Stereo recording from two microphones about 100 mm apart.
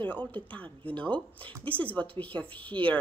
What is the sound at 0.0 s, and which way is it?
A woman's voice, 20° left (ahead or behind).